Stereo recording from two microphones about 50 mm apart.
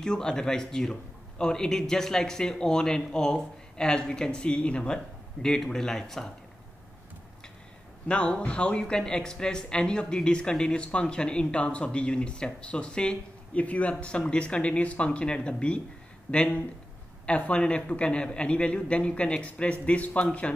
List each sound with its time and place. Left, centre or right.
0.0 s speech: centre
8.1 s speech: left